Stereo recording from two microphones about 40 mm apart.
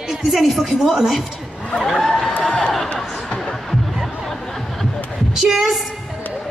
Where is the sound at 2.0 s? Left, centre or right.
Centre.